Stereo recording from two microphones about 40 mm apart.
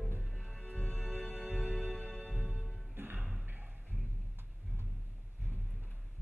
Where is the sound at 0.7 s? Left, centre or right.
Centre.